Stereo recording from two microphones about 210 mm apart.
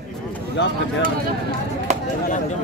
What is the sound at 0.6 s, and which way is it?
Speech, 55° left (ahead or behind).